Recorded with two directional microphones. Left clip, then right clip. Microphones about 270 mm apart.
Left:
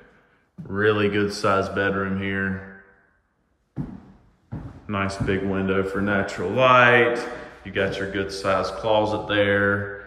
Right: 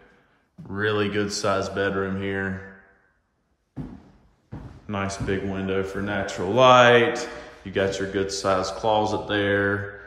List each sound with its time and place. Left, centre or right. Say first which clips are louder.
0.7 s speech: left 4 dB; centre
4.8 s speech: left 2 dB; centre
6.3 s speech: right 2 dB; centre